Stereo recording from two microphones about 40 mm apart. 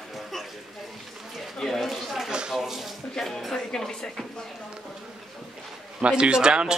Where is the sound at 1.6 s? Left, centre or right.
Centre.